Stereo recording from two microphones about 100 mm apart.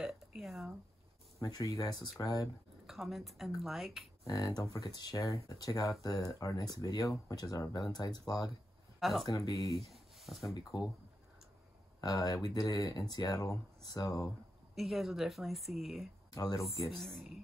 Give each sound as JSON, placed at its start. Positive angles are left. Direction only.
{"t": 0.0, "sound": "a sound", "side_deg": -5}
{"t": 1.4, "sound": "speech", "side_deg": 40}
{"t": 2.9, "sound": "speech", "side_deg": 0}
{"t": 4.2, "sound": "speech", "side_deg": 35}
{"t": 9.8, "sound": "a sound", "side_deg": 0}
{"t": 10.4, "sound": "speech", "side_deg": 35}
{"t": 12.0, "sound": "speech", "side_deg": 40}
{"t": 14.8, "sound": "speech", "side_deg": 0}
{"t": 16.3, "sound": "speech", "side_deg": 40}
{"t": 16.6, "sound": "speech", "side_deg": 0}